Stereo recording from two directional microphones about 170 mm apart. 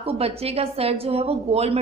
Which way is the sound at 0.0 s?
35° right (ahead or behind).